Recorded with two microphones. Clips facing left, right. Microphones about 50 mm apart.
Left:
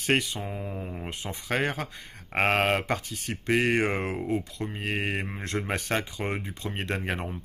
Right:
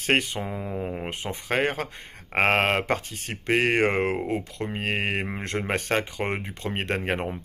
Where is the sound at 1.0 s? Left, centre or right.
Right.